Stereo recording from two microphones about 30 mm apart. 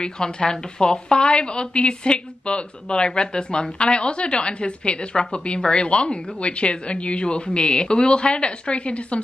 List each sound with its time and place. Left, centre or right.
0.0 s speech: left